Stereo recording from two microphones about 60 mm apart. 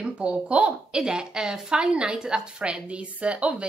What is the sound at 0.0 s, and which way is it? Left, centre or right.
A woman's voice, centre.